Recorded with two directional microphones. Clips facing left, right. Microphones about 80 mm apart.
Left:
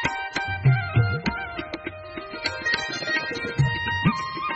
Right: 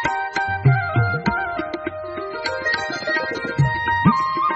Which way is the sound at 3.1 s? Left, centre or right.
Right.